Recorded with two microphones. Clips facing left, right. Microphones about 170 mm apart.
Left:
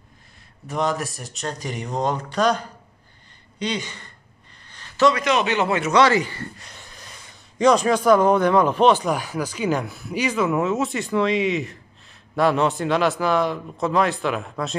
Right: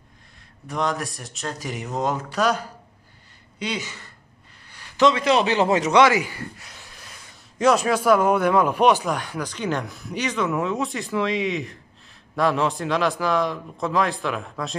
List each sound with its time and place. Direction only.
0.7 s speech: centre (ahead or behind)
4.6 s a sound: 10° right (ahead or behind)
5.2 s speech: 30° right (ahead or behind)
5.9 s a man's voice: 10° right (ahead or behind)
9.0 s speech: 5° left (ahead or behind)